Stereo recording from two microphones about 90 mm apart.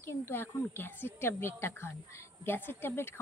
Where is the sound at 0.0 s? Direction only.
30° left (ahead or behind).